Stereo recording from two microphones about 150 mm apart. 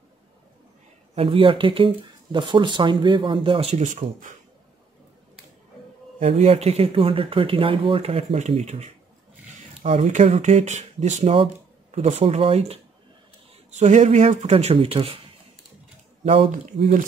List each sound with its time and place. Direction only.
1.1 s speech: 35° right (ahead or behind); by 4.4 s 55° right (ahead or behind)
6.1 s speech: 50° right (ahead or behind)
16.7 s speech: 45° right (ahead or behind)